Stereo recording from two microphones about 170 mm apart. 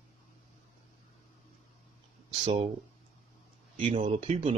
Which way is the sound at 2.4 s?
40° right (ahead or behind).